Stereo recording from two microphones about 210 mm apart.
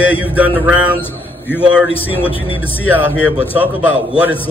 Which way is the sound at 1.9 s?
25° left (ahead or behind).